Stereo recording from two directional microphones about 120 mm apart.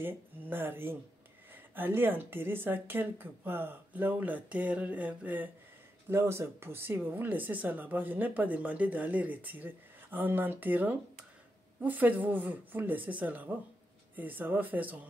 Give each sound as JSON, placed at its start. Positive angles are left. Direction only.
{"t": 0.0, "sound": "speech", "side_deg": -15}